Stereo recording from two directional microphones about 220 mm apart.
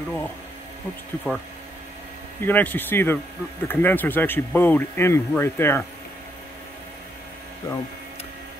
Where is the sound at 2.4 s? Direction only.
10° left (ahead or behind).